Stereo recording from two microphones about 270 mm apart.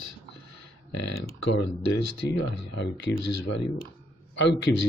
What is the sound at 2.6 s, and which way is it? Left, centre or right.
Speech, left.